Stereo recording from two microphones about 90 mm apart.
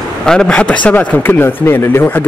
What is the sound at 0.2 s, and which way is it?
Speech, 10° left (ahead or behind).